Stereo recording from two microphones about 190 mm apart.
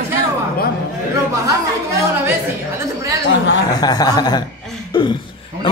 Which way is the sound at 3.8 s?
20° left (ahead or behind).